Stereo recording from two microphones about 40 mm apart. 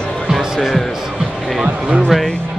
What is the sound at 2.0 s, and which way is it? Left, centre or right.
Music, centre.